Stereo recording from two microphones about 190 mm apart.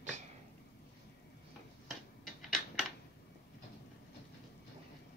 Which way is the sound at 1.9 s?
Centre (ahead or behind).